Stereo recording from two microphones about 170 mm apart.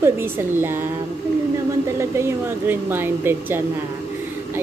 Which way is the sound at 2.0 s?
15° right (ahead or behind).